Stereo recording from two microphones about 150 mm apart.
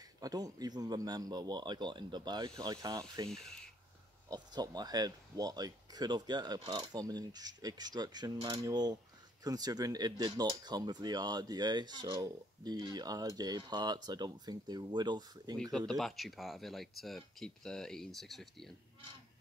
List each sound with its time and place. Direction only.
0.2 s speech: 25° right (ahead or behind)
3.3 s speech: 5° left (ahead or behind)
4.3 s speech: 25° right (ahead or behind)
15.5 s speech: 5° left (ahead or behind)